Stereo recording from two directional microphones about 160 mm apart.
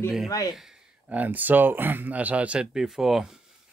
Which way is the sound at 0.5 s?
5° right (ahead or behind).